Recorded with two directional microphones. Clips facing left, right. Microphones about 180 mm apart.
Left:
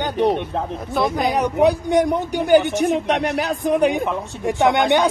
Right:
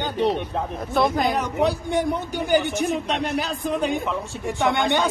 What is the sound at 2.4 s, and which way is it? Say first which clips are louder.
Speech: left 6 dB; 70° left (ahead or behind).